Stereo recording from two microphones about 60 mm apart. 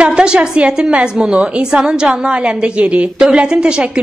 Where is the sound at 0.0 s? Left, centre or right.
Centre.